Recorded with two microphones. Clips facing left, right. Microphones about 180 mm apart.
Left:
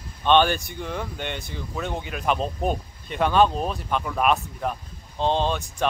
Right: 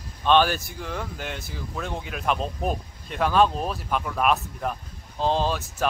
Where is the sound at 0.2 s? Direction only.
Centre (ahead or behind).